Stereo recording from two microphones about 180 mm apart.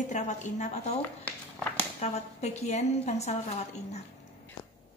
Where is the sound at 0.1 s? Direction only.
40° left (ahead or behind).